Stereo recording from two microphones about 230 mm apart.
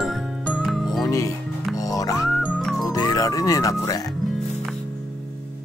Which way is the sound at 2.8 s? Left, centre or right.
Centre.